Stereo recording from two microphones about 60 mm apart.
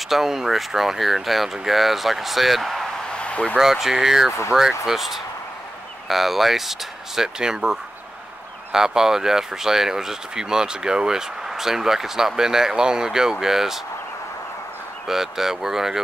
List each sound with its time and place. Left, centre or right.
0.1 s speech: centre
3.1 s a sound: centre
3.5 s speech: centre
15.0 s speech: centre